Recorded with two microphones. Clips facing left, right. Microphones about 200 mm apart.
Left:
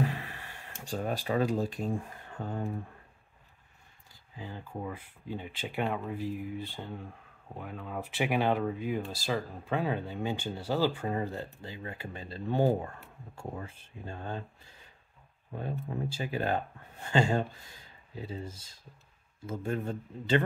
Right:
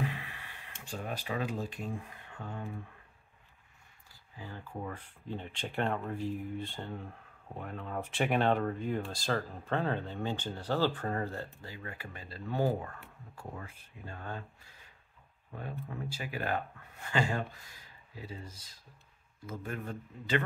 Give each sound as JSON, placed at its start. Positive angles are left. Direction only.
{"t": 0.0, "sound": "speech", "side_deg": 45}
{"t": 4.4, "sound": "speech", "side_deg": 20}
{"t": 15.9, "sound": "speech", "side_deg": 30}